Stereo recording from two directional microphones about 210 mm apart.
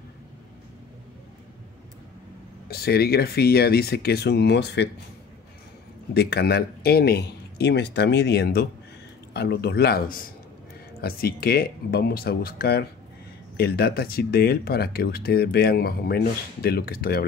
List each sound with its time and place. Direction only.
2.7 s speech: 50° left (ahead or behind)
6.1 s speech: 50° left (ahead or behind)